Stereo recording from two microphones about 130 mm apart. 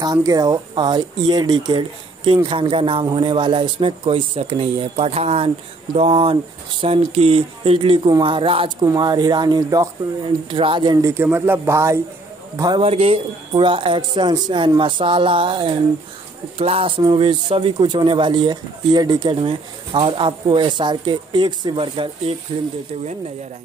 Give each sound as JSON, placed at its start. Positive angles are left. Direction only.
{"t": 0.0, "sound": "speech", "side_deg": -30}
{"t": 8.8, "sound": "speech", "side_deg": -30}
{"t": 10.5, "sound": "speech", "side_deg": -40}
{"t": 11.2, "sound": "speech", "side_deg": -15}
{"t": 12.8, "sound": "speech", "side_deg": -50}
{"t": 13.5, "sound": "speech", "side_deg": -40}
{"t": 16.5, "sound": "speech", "side_deg": -50}
{"t": 17.0, "sound": "speech", "side_deg": -35}